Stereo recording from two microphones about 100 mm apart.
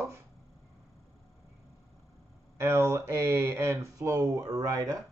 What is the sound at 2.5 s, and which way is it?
Speech, 25° right (ahead or behind).